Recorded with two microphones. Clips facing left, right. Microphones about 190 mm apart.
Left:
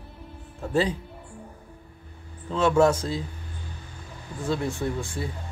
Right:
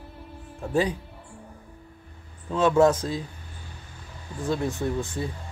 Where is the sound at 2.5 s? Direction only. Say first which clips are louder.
Right 1 dB; 15° right (ahead or behind).